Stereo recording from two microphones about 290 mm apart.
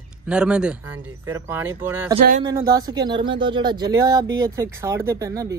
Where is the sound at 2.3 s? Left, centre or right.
Right.